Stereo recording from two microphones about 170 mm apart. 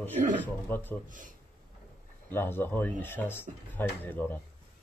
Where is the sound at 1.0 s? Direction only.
50° right (ahead or behind).